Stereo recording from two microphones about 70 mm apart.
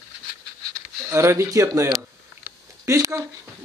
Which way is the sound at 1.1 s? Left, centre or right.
Right.